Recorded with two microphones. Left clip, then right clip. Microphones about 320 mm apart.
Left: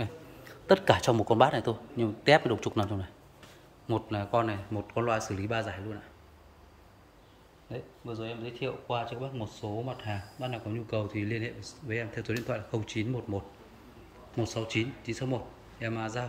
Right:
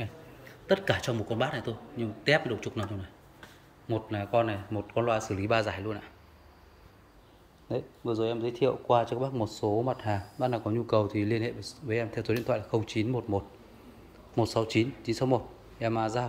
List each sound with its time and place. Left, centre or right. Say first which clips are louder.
0.7 s a man's voice: left 4 dB; centre
7.7 s speech: right 9 dB; centre
9.4 s speech: right 9 dB; right
9.8 s speech: right 7 dB; centre